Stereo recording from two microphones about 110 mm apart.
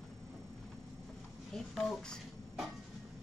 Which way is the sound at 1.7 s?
Centre (ahead or behind).